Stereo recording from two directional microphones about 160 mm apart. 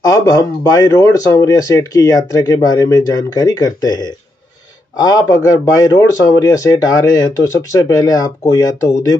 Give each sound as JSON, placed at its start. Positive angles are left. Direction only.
{"t": 0.0, "sound": "speech", "side_deg": 20}